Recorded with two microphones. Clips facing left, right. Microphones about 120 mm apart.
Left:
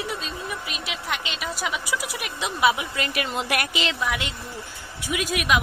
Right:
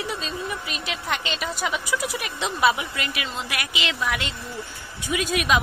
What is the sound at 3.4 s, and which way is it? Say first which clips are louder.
Speech: left 4 dB; 50° left (ahead or behind).